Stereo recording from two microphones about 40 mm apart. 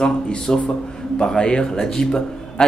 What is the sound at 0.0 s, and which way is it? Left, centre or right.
Speech, centre.